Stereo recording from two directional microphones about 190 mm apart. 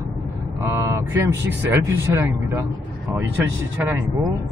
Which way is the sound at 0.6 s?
15° right (ahead or behind).